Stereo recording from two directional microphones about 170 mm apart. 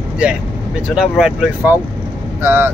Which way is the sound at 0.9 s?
Centre (ahead or behind).